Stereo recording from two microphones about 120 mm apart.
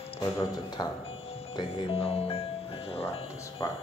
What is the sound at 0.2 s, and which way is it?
Speech, 35° left (ahead or behind).